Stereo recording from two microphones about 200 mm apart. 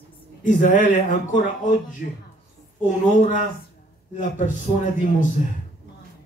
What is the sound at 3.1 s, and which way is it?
Speech, 40° left (ahead or behind).